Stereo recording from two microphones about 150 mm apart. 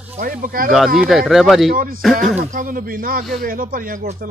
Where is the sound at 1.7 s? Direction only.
70° right (ahead or behind).